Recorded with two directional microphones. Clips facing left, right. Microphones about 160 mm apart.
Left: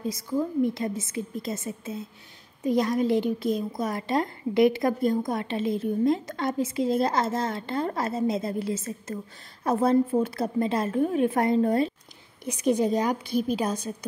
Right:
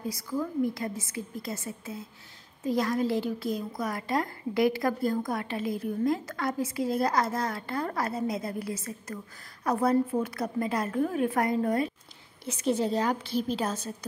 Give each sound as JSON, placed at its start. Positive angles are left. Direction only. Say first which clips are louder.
{"t": 0.0, "sound": "a woman's voice", "louder": "left 4 dB", "side_deg": 25}
{"t": 12.4, "sound": "a woman's voice", "louder": "left 4 dB", "side_deg": 15}